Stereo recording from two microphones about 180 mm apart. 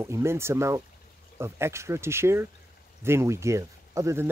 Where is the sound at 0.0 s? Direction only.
15° right (ahead or behind).